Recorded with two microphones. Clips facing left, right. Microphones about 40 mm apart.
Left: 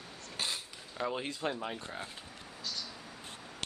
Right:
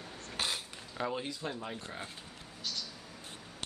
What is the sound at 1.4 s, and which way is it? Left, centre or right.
Speech, left.